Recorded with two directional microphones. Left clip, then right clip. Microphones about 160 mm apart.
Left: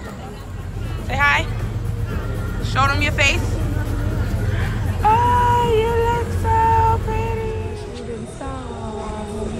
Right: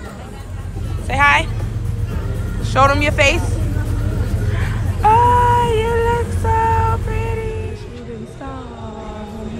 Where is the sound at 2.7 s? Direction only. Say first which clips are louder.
Right 5 dB; 5° left (ahead or behind).